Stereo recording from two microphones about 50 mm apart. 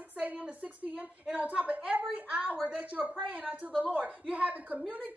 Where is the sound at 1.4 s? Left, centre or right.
Right.